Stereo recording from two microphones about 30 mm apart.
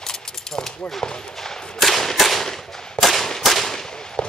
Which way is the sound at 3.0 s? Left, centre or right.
Centre.